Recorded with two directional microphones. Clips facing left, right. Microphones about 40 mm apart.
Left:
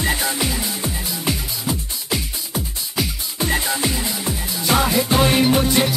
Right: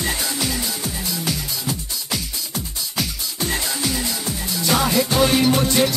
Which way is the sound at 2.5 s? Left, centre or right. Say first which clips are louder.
Left 3 dB; centre.